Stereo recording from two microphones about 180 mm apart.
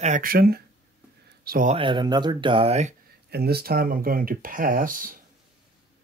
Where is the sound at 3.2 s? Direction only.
60° right (ahead or behind).